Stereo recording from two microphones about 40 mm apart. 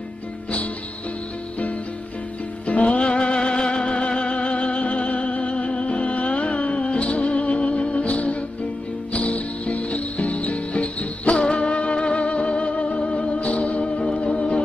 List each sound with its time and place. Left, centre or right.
2.6 s music: left
9.1 s cricket: left
11.5 s music: left